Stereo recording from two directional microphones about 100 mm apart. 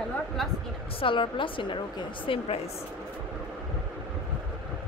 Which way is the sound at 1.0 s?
55° left (ahead or behind).